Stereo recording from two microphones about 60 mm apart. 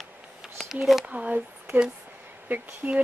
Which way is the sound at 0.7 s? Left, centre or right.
Centre.